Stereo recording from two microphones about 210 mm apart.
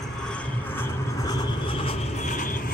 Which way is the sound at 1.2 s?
25° left (ahead or behind).